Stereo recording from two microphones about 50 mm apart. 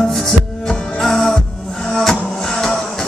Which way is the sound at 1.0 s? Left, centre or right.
Centre.